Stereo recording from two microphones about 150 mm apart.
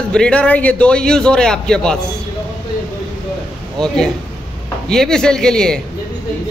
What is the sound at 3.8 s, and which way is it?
A man's voice, 5° left (ahead or behind).